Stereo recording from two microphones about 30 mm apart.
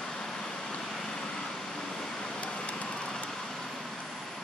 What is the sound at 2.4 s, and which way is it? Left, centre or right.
Vehicle, left.